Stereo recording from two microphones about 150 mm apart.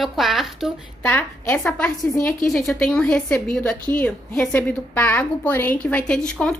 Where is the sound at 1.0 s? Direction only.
15° left (ahead or behind).